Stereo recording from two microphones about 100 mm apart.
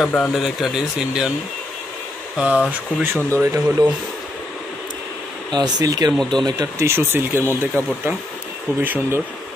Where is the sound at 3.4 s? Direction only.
30° right (ahead or behind).